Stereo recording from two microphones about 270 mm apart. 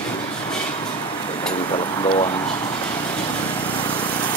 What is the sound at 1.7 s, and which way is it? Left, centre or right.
Speech, centre.